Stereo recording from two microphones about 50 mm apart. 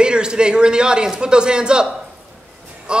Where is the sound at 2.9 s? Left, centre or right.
Centre.